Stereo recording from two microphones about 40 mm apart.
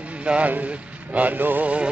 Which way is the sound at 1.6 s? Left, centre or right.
Right.